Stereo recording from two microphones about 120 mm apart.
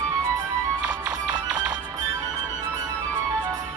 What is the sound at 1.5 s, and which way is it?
Music, 10° right (ahead or behind).